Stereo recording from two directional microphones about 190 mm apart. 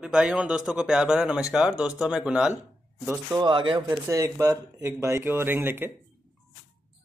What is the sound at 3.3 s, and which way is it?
A man's voice, 25° right (ahead or behind).